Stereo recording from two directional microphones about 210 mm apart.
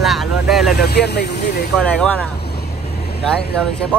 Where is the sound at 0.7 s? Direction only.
50° left (ahead or behind).